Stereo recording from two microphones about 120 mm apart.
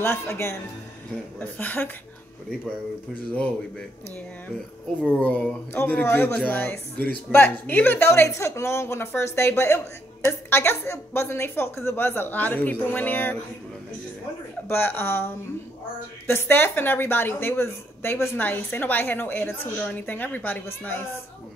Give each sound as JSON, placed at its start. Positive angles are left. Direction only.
{"t": 0.0, "sound": "a woman's voice", "side_deg": 20}
{"t": 5.0, "sound": "a woman's voice", "side_deg": 10}
{"t": 14.7, "sound": "a woman's voice", "side_deg": 20}